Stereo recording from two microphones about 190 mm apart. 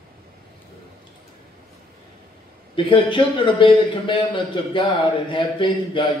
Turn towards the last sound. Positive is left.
turn(degrees=25)  # may be behind; listen again after turning